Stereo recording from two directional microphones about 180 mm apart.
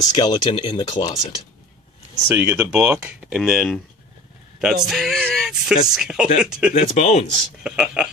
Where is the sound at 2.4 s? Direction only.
10° right (ahead or behind).